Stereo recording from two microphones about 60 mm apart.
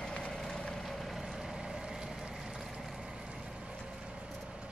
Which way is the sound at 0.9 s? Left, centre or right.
Centre.